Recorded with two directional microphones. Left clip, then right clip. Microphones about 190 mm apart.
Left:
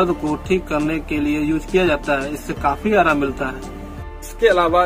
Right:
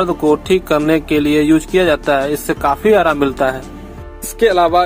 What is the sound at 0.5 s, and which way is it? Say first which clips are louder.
Speech: right 7 dB; 35° right (ahead or behind).